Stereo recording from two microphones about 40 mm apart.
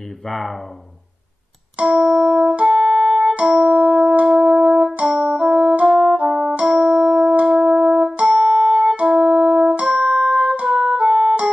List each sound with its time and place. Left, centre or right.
0.3 s speech: centre
2.0 s music: centre
2.4 s music: right
2.7 s music: centre
3.5 s keyboard: right
4.5 s music: right
5.0 s music: centre; by 6.6 s right
6.6 s music: right
8.3 s music: centre
9.1 s music: centre
10.1 s music: right